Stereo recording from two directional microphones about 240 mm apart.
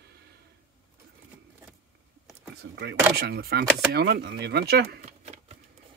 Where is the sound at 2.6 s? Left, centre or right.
Right.